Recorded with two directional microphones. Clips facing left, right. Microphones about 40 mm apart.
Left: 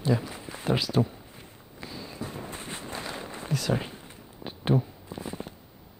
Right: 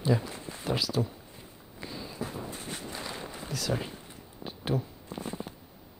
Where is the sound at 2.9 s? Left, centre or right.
Centre.